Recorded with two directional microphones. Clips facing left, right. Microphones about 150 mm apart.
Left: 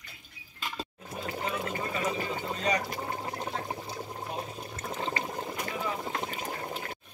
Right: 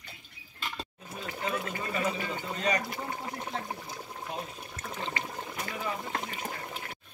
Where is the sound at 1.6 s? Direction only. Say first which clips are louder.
Even; 30° left (ahead or behind).